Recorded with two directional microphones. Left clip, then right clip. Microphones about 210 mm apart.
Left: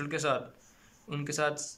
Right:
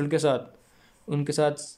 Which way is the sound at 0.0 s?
25° right (ahead or behind).